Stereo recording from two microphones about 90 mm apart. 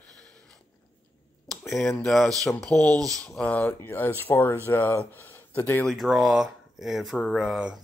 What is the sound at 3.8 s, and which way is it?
Speech, 25° left (ahead or behind).